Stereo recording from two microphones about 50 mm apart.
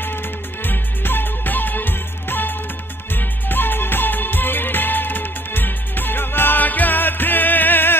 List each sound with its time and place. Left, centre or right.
0.7 s music: left